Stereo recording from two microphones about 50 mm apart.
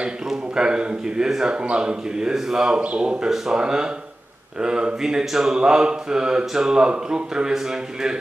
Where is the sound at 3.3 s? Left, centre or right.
Centre.